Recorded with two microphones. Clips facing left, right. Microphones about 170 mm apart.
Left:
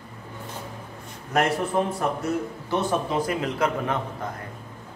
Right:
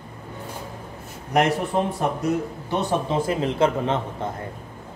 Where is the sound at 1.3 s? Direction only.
15° right (ahead or behind).